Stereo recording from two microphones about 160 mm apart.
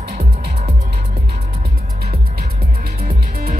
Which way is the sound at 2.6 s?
70° right (ahead or behind).